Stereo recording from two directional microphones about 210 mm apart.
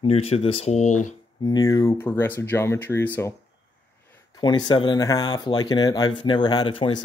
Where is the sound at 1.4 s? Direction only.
15° left (ahead or behind).